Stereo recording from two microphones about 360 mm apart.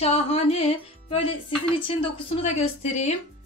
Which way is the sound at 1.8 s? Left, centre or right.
Centre.